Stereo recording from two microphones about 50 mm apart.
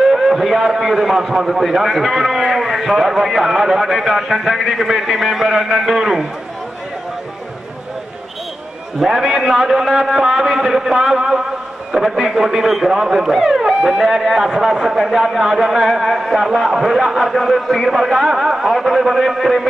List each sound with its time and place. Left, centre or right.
0.1 s a man's voice: centre
9.0 s a man's voice: centre